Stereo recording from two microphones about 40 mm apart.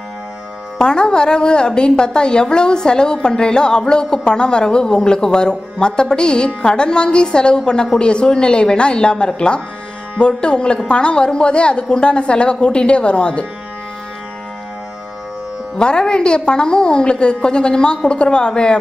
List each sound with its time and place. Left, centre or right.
0.7 s a woman's voice: left
15.8 s a woman's voice: left